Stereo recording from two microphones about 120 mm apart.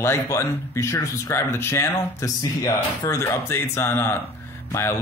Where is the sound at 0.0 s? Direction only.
25° left (ahead or behind).